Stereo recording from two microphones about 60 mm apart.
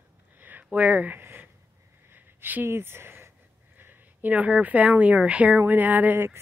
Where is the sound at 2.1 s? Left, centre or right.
Right.